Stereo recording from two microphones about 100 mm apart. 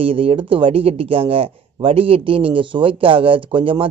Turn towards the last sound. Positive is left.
turn(degrees=-60)  # may be behind; listen again after turning